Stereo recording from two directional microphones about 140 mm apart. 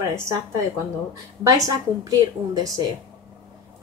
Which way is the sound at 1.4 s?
25° right (ahead or behind).